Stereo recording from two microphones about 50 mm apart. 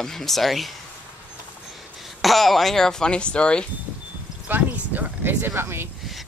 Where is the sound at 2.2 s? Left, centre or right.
Centre.